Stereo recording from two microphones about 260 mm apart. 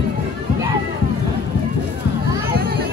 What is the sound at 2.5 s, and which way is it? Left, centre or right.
Music, right.